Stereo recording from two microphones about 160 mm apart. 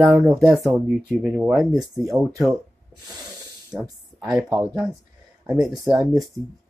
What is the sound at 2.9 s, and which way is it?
Snort, 25° right (ahead or behind).